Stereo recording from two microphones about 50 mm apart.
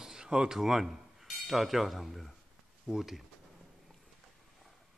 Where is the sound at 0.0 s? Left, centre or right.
Centre.